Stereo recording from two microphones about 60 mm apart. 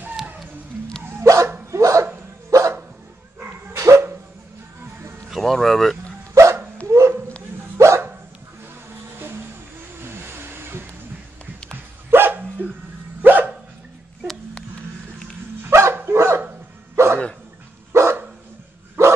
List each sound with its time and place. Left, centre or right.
1.2 s dog: right
3.3 s dog: right
3.7 s dog: right
5.3 s speech: centre
6.3 s dog: right
9.9 s vehicle: right
12.1 s dog: right
15.6 s dog: right
16.9 s hiccup: right
19.0 s dog: right